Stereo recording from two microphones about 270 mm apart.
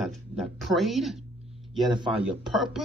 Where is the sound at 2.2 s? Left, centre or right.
Centre.